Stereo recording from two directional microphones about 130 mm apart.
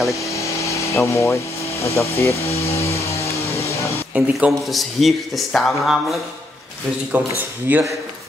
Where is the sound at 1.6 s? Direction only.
50° left (ahead or behind).